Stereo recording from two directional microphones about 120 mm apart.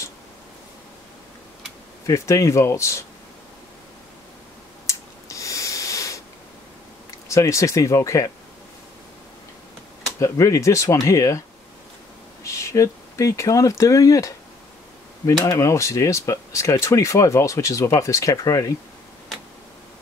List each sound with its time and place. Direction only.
2.0 s speech: 25° left (ahead or behind)
4.8 s a sound: 25° left (ahead or behind)
7.2 s speech: 25° left (ahead or behind)
10.1 s speech: 25° left (ahead or behind)
12.4 s speech: 25° left (ahead or behind)